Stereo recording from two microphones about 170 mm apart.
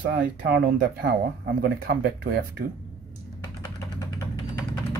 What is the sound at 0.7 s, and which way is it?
Speech, 60° right (ahead or behind).